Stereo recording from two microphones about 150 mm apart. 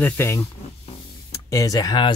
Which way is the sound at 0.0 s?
15° left (ahead or behind).